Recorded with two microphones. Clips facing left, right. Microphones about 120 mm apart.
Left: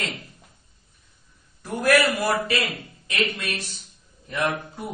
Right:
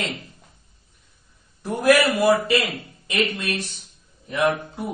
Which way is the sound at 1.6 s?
15° right (ahead or behind).